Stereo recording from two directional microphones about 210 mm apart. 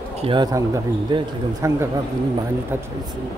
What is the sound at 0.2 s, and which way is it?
Speech, 20° right (ahead or behind).